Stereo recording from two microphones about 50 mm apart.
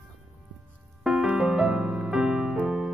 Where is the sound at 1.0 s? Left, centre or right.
Centre.